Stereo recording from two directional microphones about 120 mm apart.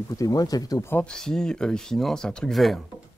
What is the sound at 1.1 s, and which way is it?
Speech, 5° left (ahead or behind).